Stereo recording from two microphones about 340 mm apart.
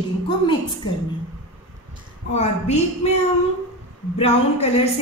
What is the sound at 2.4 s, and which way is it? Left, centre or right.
Speech, centre.